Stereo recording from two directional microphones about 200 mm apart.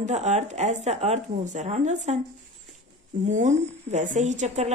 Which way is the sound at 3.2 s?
35° right (ahead or behind).